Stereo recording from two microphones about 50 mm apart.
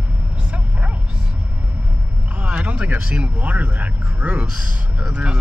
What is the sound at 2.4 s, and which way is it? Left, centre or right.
Speech, right.